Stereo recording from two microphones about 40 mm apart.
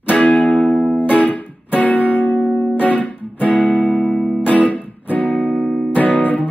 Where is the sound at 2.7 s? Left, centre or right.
Left.